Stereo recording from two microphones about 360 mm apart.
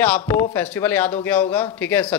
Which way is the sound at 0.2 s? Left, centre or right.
Centre.